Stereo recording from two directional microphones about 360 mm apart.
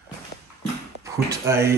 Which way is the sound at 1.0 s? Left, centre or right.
Centre.